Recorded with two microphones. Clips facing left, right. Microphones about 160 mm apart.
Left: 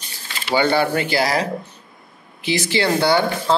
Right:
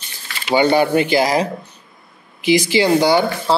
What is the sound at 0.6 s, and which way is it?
Speech, 15° right (ahead or behind).